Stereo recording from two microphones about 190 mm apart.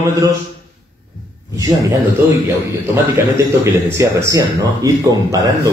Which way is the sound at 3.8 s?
15° right (ahead or behind).